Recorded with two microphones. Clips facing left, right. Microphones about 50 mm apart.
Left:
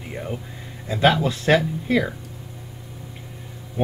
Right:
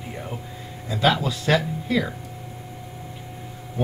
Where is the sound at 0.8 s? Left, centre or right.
Left.